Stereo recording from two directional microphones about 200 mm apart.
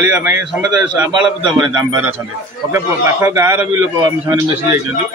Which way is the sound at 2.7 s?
10° right (ahead or behind).